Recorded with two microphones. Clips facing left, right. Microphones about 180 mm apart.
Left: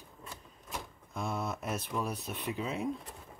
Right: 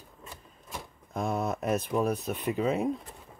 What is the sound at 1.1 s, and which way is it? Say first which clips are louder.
Speech: right 6 dB; 40° right (ahead or behind).